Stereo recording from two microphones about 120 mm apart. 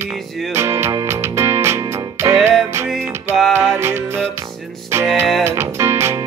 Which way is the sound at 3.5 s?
20° right (ahead or behind).